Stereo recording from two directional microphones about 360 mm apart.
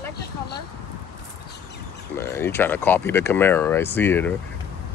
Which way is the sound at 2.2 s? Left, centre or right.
Centre.